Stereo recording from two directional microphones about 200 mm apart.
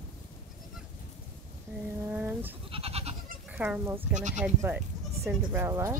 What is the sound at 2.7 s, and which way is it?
Goat, 30° right (ahead or behind).